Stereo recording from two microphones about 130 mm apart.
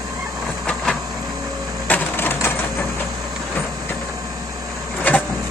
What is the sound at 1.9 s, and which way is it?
Typewriter, 15° left (ahead or behind).